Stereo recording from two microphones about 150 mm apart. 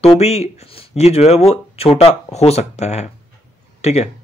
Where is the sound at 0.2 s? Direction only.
45° left (ahead or behind).